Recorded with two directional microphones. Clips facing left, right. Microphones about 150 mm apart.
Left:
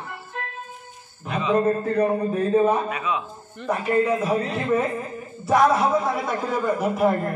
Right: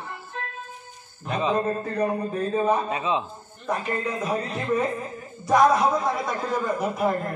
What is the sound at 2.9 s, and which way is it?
Speech, 25° right (ahead or behind).